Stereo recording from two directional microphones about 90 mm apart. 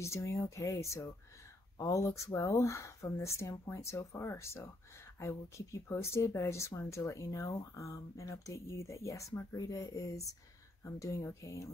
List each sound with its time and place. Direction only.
0.0 s speech: 35° left (ahead or behind)